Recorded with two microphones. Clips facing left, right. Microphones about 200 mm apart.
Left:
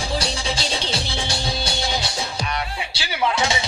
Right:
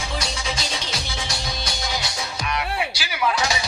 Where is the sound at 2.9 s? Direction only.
25° left (ahead or behind).